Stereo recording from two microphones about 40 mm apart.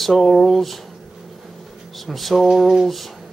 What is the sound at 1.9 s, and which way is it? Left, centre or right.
Speech, centre.